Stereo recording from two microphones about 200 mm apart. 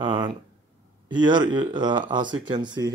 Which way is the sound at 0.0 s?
25° right (ahead or behind).